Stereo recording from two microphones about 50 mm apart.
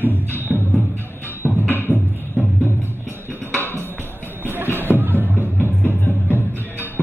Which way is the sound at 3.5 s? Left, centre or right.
Left.